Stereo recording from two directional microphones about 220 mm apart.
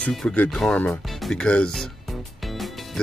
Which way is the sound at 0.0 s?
5° left (ahead or behind).